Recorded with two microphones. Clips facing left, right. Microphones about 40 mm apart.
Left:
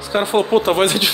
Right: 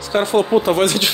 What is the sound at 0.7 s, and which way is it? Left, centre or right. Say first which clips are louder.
Speech: even; left.